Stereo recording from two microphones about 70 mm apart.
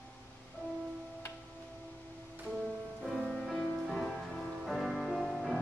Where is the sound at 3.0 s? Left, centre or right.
Centre.